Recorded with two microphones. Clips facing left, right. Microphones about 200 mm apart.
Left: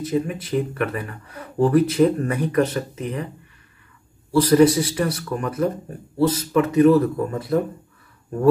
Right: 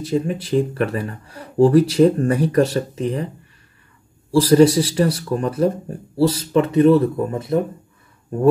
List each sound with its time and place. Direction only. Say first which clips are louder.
0.0 s speech: right 2 dB; 30° right (ahead or behind)
4.3 s speech: right 2 dB; 30° right (ahead or behind)